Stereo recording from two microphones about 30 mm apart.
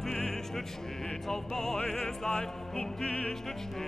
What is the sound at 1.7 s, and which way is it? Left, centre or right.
Opera, left.